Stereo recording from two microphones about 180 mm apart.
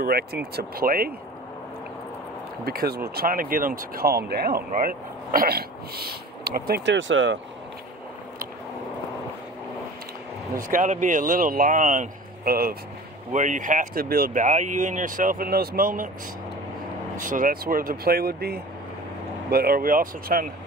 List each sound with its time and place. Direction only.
0.0 s speech: 60° right (ahead or behind)
2.6 s speech: 55° right (ahead or behind); by 7.3 s 90° right
10.5 s speech: 45° right (ahead or behind)
17.2 s speech: 50° right (ahead or behind)